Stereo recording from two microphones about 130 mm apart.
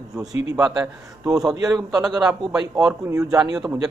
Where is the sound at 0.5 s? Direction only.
5° right (ahead or behind).